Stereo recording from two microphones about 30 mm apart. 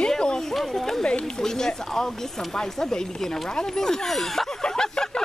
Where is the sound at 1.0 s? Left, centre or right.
Left.